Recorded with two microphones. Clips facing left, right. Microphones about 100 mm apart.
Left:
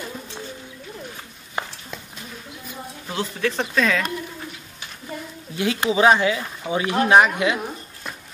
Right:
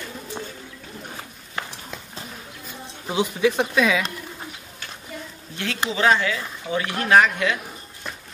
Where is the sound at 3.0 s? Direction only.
15° right (ahead or behind).